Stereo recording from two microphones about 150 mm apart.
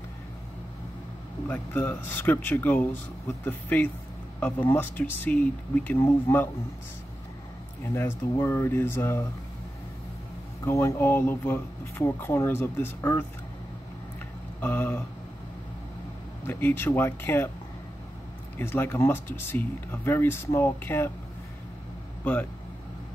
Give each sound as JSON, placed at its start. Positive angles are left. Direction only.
{"t": 1.5, "sound": "speech", "side_deg": 15}
{"t": 7.9, "sound": "speech", "side_deg": 15}
{"t": 10.6, "sound": "speech", "side_deg": 15}
{"t": 14.6, "sound": "speech", "side_deg": 15}
{"t": 16.4, "sound": "speech", "side_deg": 15}
{"t": 18.6, "sound": "speech", "side_deg": 15}
{"t": 22.2, "sound": "speech", "side_deg": 10}